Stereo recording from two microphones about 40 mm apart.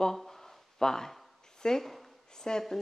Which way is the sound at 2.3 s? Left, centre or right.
Centre.